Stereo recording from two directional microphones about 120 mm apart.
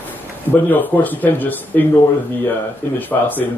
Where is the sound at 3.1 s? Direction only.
20° left (ahead or behind).